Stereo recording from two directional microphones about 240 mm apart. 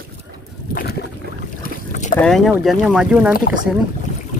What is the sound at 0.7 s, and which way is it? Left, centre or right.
Boat, left.